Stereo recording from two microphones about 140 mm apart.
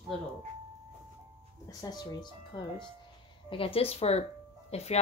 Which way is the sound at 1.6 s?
30° left (ahead or behind).